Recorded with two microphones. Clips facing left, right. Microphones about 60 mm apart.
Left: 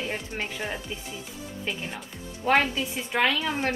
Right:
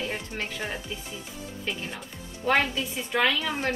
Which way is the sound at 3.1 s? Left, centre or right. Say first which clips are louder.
Even; centre.